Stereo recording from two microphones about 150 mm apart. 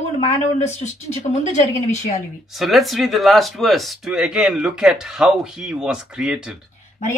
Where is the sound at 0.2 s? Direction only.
50° left (ahead or behind).